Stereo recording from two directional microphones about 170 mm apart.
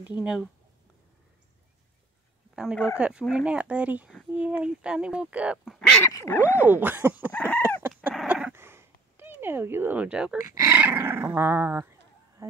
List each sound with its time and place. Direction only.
0.2 s speech: 5° right (ahead or behind)
2.5 s speech: 5° right (ahead or behind)
3.0 s dog: 5° right (ahead or behind)
4.3 s speech: 5° right (ahead or behind)
5.8 s dog: 5° left (ahead or behind)
6.0 s a sound: 15° left (ahead or behind)
6.6 s dog: 10° right (ahead or behind)
7.3 s chicken: 10° left (ahead or behind)
8.1 s a sound: centre (ahead or behind)
10.6 s dog: 15° right (ahead or behind)
12.4 s chicken: 20° right (ahead or behind)